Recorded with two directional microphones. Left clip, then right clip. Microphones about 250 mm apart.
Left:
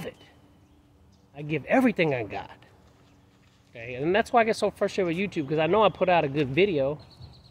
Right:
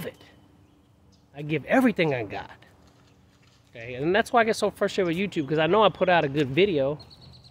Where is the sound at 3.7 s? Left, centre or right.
Centre.